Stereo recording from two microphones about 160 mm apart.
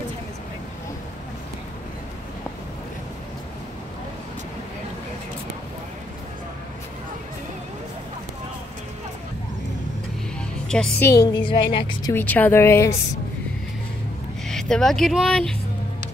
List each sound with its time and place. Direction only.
10.7 s a woman's voice: 5° left (ahead or behind)
11.1 s a woman's voice: 25° left (ahead or behind)
12.1 s a woman's voice: 10° left (ahead or behind)
14.5 s speech: 5° left (ahead or behind)